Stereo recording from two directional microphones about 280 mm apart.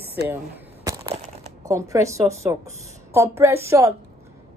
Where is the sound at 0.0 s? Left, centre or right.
Centre.